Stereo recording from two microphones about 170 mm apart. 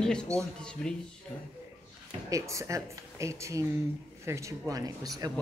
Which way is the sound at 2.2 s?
20° right (ahead or behind).